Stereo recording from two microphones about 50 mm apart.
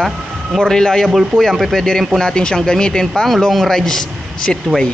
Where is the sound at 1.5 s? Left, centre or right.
Centre.